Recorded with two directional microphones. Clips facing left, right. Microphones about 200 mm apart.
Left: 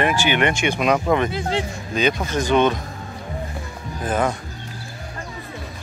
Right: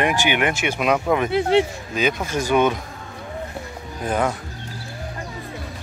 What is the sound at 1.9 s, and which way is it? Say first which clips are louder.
Speech: left 2 dB; 5° right (ahead or behind).